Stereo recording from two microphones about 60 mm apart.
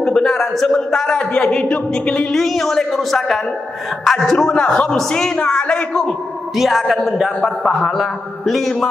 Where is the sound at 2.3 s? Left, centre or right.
Centre.